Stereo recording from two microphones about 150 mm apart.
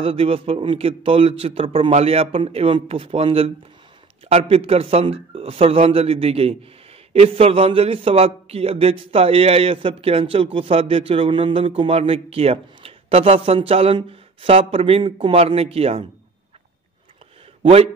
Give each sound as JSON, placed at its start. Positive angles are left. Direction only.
{"t": 0.0, "sound": "a man's voice", "side_deg": -40}
{"t": 17.6, "sound": "speech", "side_deg": -40}